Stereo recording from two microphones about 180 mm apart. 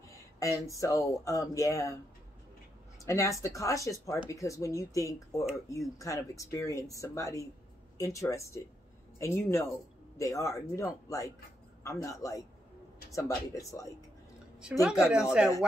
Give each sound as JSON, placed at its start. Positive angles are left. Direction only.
{"t": 0.1, "sound": "speech", "side_deg": 20}
{"t": 3.0, "sound": "speech", "side_deg": 15}
{"t": 14.6, "sound": "speech", "side_deg": -5}